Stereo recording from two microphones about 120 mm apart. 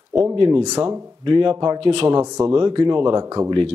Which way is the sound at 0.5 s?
30° right (ahead or behind).